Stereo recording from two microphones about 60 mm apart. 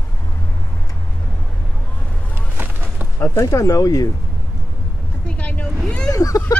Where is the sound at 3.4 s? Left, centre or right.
Left.